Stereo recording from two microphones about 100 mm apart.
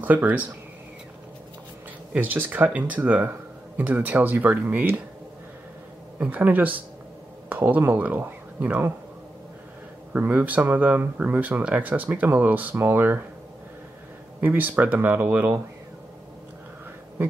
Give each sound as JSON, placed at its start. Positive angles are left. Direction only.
{"t": 0.0, "sound": "speech", "side_deg": -15}
{"t": 2.1, "sound": "speech", "side_deg": -20}
{"t": 6.1, "sound": "speech", "side_deg": -15}
{"t": 10.1, "sound": "speech", "side_deg": -15}
{"t": 14.4, "sound": "speech", "side_deg": -20}